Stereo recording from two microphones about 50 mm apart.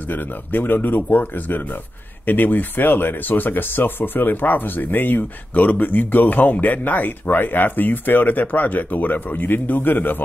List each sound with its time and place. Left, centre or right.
0.1 s speech: left